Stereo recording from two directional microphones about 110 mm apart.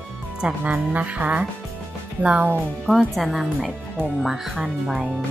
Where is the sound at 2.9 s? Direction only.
5° left (ahead or behind).